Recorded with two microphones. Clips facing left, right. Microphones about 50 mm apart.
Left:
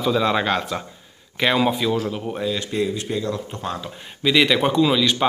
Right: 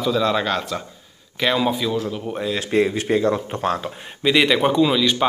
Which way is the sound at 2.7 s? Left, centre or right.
Right.